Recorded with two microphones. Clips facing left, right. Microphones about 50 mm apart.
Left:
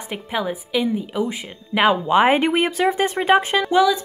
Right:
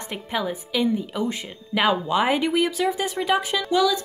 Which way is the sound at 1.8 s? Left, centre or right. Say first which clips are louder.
Left 5 dB; left.